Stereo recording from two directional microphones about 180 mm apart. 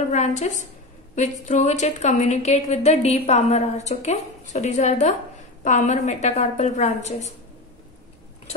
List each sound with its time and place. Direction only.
0.1 s a woman's voice: 40° left (ahead or behind)